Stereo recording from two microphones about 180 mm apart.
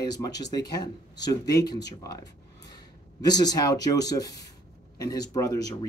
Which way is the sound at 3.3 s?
20° left (ahead or behind).